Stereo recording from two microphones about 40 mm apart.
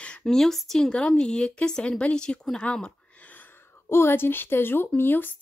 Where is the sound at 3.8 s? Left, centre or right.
Left.